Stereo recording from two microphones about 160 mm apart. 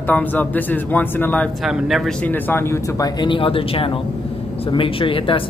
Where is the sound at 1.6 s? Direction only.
Centre (ahead or behind).